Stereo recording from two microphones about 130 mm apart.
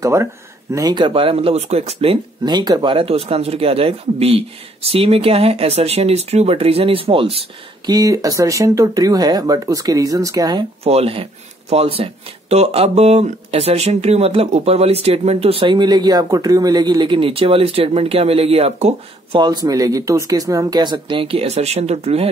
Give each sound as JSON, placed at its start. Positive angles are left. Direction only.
{"t": 0.0, "sound": "speech", "side_deg": -20}
{"t": 0.7, "sound": "speech", "side_deg": -35}
{"t": 2.4, "sound": "speech", "side_deg": -30}
{"t": 7.8, "sound": "speech", "side_deg": -30}
{"t": 10.8, "sound": "speech", "side_deg": -50}
{"t": 19.3, "sound": "speech", "side_deg": -35}